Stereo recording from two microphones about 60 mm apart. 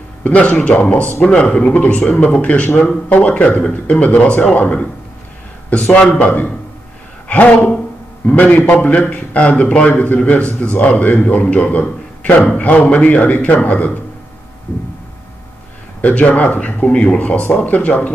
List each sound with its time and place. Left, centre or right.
0.2 s a man's voice: left
6.1 s a man's voice: left
16.0 s a man's voice: left